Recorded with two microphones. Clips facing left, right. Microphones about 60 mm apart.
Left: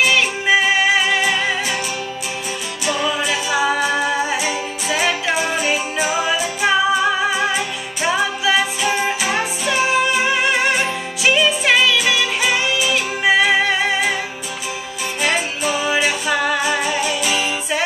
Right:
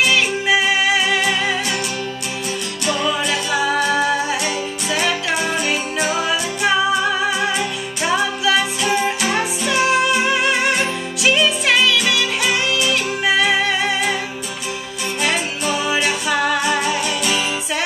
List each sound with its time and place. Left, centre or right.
0.0 s music: centre
2.9 s music: centre
15.2 s music: centre